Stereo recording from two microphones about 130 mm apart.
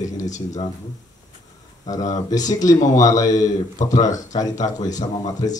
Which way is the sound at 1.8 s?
25° left (ahead or behind).